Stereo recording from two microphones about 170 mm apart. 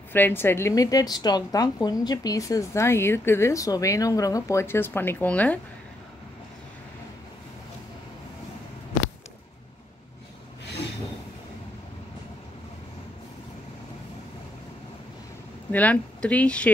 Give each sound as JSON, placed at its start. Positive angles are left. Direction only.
{"t": 0.1, "sound": "a woman's voice", "side_deg": 10}
{"t": 15.7, "sound": "a woman's voice", "side_deg": 10}